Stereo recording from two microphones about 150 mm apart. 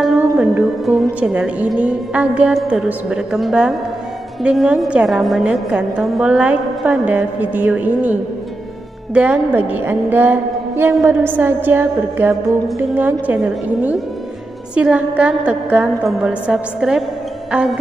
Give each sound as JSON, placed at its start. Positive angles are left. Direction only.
{"t": 0.0, "sound": "music", "side_deg": -5}
{"t": 1.2, "sound": "a woman's voice", "side_deg": -10}
{"t": 14.8, "sound": "a woman's voice", "side_deg": -10}
{"t": 17.5, "sound": "music", "side_deg": -5}